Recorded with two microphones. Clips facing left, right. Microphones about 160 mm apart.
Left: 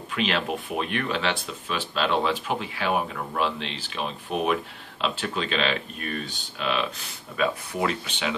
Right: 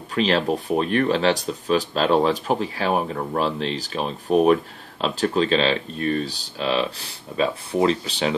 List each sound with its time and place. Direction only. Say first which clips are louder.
0.1 s speech: right 6 dB; 35° right (ahead or behind)